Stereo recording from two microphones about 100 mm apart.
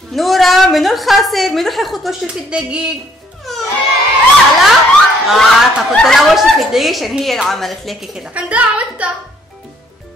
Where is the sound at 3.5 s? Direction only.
Centre (ahead or behind).